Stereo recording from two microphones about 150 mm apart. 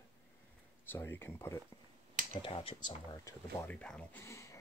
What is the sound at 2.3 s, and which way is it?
Speech, 35° left (ahead or behind).